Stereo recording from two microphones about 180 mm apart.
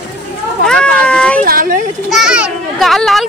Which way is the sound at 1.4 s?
50° right (ahead or behind).